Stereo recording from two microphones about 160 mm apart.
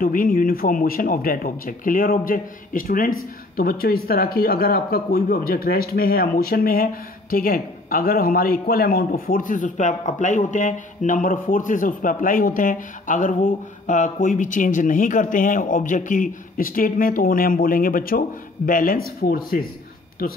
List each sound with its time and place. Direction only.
0.0 s speech: 60° left (ahead or behind)